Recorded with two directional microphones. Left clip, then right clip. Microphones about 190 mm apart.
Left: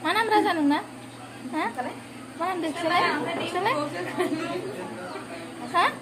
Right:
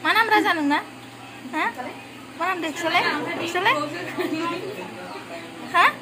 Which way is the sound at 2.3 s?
5° left (ahead or behind).